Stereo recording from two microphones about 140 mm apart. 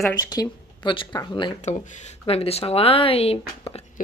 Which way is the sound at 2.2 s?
45° left (ahead or behind).